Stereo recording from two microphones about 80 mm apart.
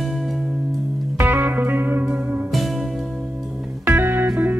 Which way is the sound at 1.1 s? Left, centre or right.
Right.